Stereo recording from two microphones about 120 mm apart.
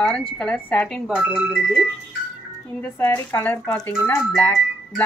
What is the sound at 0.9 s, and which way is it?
Speech, 5° right (ahead or behind).